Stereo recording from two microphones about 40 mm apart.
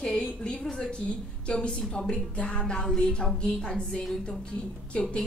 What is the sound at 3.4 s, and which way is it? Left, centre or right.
A woman's voice, left.